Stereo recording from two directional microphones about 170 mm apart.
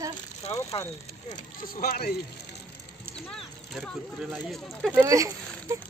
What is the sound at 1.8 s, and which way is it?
Speech, 65° left (ahead or behind).